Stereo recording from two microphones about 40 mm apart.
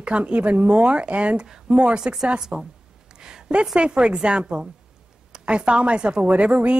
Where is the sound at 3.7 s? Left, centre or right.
Right.